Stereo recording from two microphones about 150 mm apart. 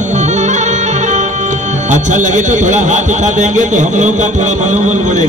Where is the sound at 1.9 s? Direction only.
55° right (ahead or behind).